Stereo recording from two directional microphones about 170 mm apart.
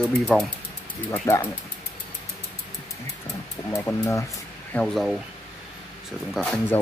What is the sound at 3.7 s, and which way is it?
Speech, 15° left (ahead or behind).